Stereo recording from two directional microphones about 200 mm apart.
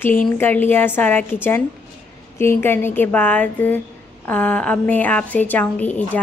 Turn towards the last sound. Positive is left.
turn(degrees=10)  # may be behind; listen again after turning